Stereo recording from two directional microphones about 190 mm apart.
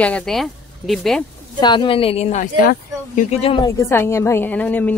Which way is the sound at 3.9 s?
15° left (ahead or behind).